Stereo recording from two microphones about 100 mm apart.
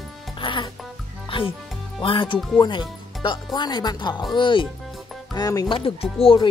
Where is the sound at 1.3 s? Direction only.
60° left (ahead or behind).